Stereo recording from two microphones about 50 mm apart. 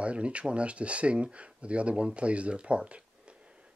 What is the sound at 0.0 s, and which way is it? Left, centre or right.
Speech, right.